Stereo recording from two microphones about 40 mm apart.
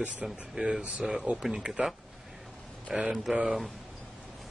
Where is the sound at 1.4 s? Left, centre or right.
Centre.